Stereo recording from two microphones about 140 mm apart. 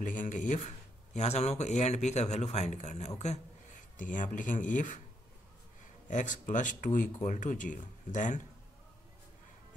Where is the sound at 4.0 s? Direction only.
65° left (ahead or behind).